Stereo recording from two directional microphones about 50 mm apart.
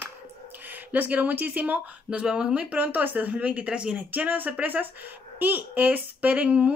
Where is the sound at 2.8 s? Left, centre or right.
Right.